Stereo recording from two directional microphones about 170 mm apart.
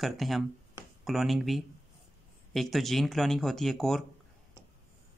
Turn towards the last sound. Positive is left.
turn(degrees=0)  # may be behind; listen again after turning